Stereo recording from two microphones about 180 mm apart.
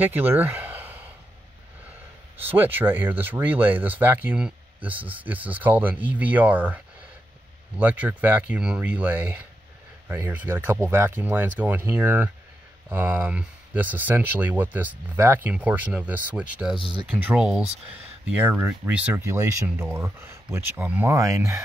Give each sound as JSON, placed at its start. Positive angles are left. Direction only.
{"t": 0.0, "sound": "speech", "side_deg": -10}
{"t": 2.4, "sound": "speech", "side_deg": -10}